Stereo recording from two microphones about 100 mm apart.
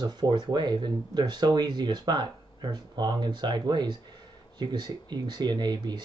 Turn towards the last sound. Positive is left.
turn(degrees=-45)  # may be behind; listen again after turning